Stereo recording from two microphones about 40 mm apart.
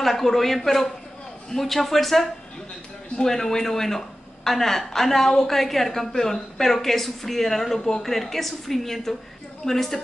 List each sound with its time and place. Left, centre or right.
0.0 s speech: centre
3.3 s a woman's voice: centre